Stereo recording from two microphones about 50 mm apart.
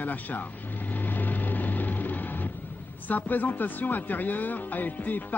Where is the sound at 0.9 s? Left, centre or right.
Left.